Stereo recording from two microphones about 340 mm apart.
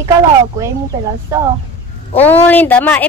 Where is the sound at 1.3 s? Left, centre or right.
Centre.